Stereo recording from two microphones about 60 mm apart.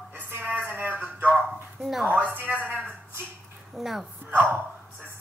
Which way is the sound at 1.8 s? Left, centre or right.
Centre.